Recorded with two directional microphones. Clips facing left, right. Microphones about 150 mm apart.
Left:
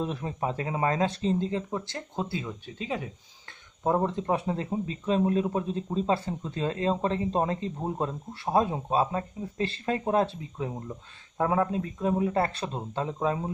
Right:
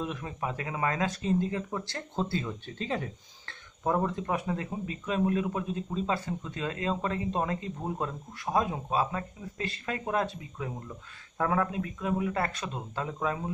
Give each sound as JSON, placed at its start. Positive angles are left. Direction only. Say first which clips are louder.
{"t": 0.0, "sound": "speech", "louder": "left 4 dB", "side_deg": 35}
{"t": 3.8, "sound": "speech", "louder": "left 3 dB", "side_deg": 25}